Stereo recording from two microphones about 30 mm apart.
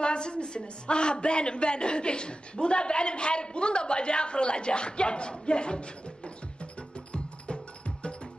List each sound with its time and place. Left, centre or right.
0.0 s a woman's voice: left